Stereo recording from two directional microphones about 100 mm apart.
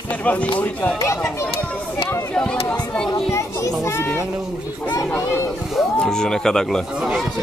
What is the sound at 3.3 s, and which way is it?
Children playing, 30° left (ahead or behind).